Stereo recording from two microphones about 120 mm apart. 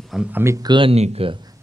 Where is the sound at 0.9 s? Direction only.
55° right (ahead or behind).